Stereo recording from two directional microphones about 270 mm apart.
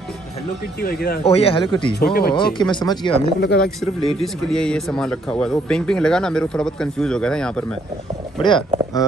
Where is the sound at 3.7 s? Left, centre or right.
Centre.